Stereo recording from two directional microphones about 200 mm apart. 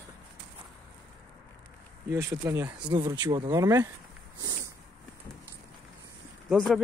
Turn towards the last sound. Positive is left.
turn(degrees=0)  # may be behind; listen again after turning